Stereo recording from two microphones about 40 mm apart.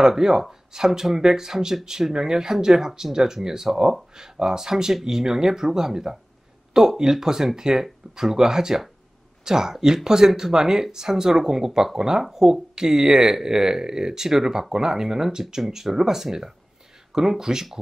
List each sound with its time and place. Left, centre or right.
0.0 s speech: centre